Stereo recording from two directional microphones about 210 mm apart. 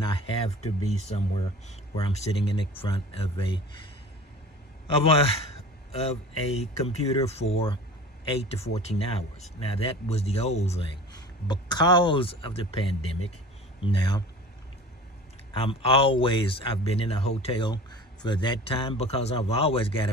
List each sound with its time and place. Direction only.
0.0 s speech: 30° left (ahead or behind)
5.9 s a man's voice: 30° left (ahead or behind)
15.6 s speech: 25° left (ahead or behind)